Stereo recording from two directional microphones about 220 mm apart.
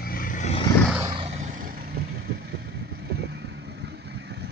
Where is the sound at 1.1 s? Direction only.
25° right (ahead or behind).